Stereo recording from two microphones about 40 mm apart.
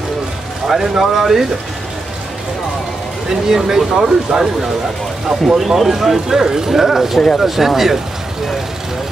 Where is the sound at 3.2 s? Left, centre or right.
Centre.